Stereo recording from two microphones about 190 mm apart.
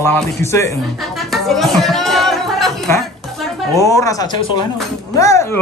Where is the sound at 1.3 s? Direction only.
Centre (ahead or behind).